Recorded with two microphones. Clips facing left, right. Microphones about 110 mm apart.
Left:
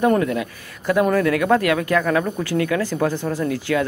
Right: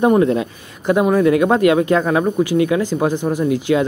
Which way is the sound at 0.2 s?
25° right (ahead or behind).